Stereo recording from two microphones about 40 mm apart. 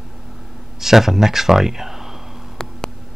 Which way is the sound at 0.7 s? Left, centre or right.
Centre.